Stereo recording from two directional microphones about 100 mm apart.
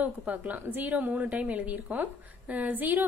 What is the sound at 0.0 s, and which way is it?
A woman's voice, 15° right (ahead or behind).